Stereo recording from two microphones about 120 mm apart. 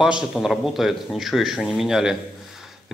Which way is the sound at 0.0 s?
5° right (ahead or behind).